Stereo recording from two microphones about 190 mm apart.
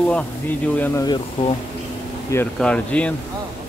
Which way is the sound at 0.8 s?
15° left (ahead or behind).